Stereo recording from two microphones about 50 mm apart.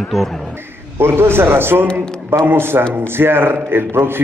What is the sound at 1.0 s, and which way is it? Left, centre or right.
A man's voice, right.